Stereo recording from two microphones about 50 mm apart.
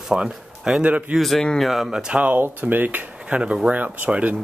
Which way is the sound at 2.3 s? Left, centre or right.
Right.